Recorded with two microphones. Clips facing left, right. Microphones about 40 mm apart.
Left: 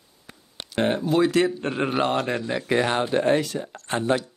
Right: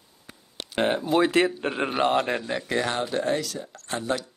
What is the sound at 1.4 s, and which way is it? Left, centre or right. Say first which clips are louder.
Speech: left 2 dB; centre.